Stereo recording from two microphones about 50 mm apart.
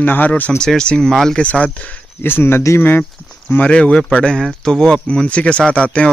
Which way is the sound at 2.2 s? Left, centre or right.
Left.